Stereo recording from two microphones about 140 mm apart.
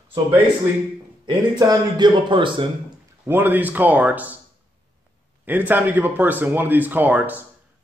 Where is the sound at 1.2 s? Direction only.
30° right (ahead or behind).